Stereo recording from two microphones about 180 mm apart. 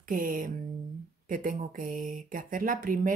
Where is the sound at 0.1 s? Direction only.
50° right (ahead or behind).